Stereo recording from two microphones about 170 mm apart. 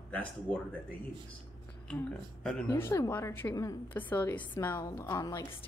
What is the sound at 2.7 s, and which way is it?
A woman's voice, 15° left (ahead or behind).